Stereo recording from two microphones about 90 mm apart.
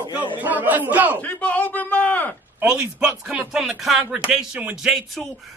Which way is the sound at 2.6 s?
10° right (ahead or behind).